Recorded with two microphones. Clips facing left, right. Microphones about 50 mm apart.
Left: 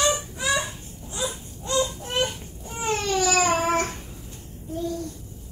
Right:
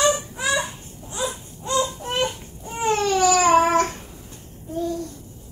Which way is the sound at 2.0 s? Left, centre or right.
Centre.